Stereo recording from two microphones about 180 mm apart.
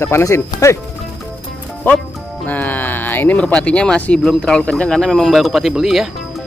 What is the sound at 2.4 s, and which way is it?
Speech, 10° left (ahead or behind).